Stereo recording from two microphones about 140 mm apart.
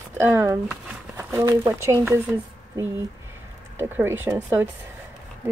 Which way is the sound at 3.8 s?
15° right (ahead or behind).